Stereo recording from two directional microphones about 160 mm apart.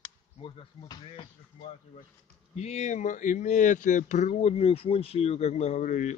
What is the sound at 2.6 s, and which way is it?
Speech, 45° left (ahead or behind).